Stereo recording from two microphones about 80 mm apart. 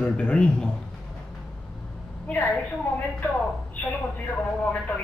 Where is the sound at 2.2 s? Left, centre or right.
Left.